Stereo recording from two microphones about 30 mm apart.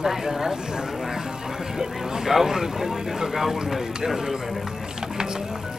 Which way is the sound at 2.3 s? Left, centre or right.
Centre.